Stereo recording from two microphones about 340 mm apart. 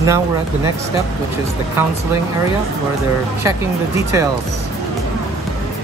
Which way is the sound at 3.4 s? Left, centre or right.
Centre.